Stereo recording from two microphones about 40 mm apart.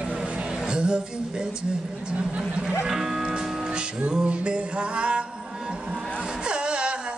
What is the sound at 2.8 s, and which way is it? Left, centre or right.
Music, centre.